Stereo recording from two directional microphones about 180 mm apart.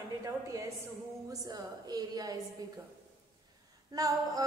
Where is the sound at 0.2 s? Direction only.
20° right (ahead or behind).